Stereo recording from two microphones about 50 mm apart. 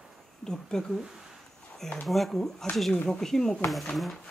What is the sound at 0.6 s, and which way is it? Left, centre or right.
Speech, centre.